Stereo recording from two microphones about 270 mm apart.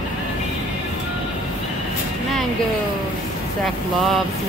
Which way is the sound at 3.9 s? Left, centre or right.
Centre.